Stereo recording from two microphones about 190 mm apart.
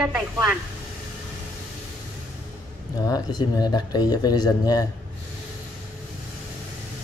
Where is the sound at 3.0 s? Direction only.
20° left (ahead or behind).